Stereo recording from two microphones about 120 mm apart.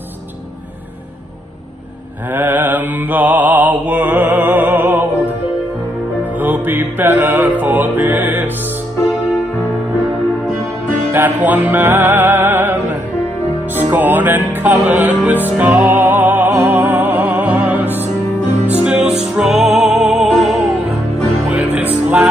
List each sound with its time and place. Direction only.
2.3 s mantra: 15° right (ahead or behind)
6.4 s music: 15° right (ahead or behind)
11.1 s music: 15° right (ahead or behind)
21.5 s music: 10° right (ahead or behind)